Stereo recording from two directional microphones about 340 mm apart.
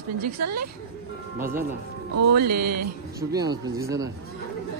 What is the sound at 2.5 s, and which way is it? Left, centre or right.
Speech, right.